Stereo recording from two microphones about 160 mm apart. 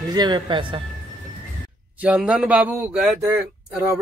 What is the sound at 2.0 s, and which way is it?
Speech, 5° right (ahead or behind).